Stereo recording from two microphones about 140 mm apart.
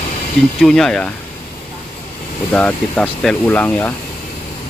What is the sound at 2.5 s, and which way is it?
Speech, 10° left (ahead or behind).